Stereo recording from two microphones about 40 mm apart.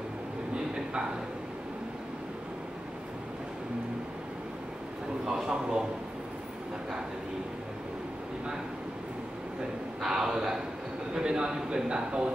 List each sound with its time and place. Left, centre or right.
5.2 s speech: centre
10.0 s a man's voice: centre